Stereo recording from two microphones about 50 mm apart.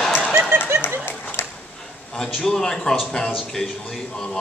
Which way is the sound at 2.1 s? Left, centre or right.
Centre.